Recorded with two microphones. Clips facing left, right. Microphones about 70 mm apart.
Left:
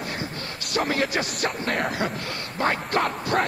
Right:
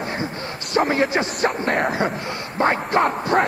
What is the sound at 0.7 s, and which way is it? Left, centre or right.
Speech, right.